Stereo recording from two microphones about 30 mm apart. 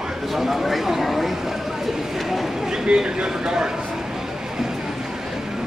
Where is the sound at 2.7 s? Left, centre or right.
Right.